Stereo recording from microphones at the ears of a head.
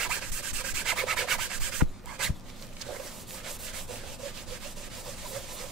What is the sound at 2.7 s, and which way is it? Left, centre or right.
Rub, right.